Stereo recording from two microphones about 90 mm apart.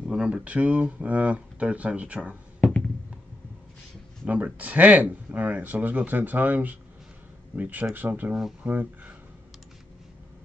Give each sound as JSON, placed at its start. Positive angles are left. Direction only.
{"t": 0.0, "sound": "speech", "side_deg": -10}
{"t": 4.3, "sound": "speech", "side_deg": -15}